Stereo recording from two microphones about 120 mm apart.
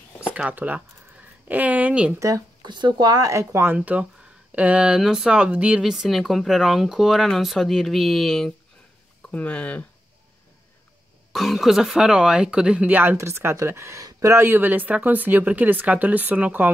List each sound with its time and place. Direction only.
0.3 s speech: 15° right (ahead or behind)
2.1 s speech: 25° right (ahead or behind)
3.7 s speech: 10° right (ahead or behind); by 9.8 s 10° left (ahead or behind)
11.3 s speech: centre (ahead or behind)